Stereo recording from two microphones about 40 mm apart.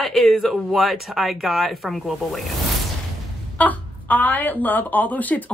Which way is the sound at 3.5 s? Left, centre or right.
Left.